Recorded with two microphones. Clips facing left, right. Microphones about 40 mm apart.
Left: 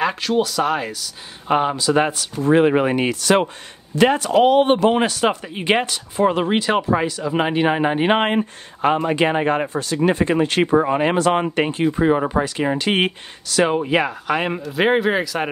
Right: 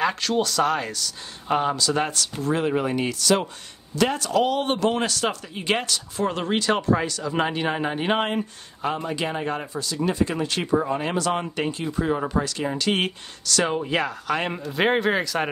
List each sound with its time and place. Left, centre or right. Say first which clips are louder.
0.0 s speech: left 3 dB; centre
2.4 s a man's voice: left 9 dB; left; by 14.6 s centre
14.6 s speech: left 3 dB; centre